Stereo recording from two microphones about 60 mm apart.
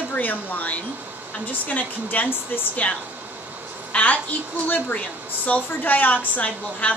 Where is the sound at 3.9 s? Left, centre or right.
Left.